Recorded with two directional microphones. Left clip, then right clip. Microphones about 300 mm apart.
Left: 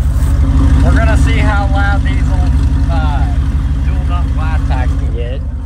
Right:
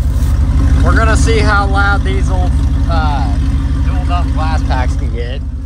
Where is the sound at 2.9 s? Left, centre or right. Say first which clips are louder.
Right 4 dB; centre.